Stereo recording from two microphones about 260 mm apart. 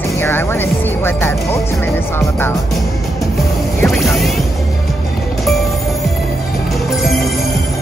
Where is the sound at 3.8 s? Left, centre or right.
Centre.